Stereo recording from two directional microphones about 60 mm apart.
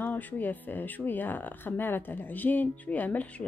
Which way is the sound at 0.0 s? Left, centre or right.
Left.